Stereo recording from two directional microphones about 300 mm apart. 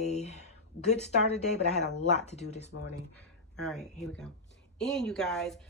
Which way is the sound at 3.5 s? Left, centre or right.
Centre.